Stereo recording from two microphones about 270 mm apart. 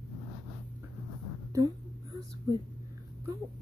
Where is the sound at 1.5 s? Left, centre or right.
Centre.